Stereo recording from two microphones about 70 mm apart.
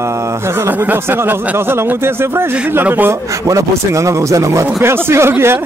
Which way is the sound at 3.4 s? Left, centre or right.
Right.